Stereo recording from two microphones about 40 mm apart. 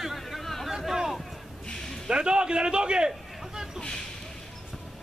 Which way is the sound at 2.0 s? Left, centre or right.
Right.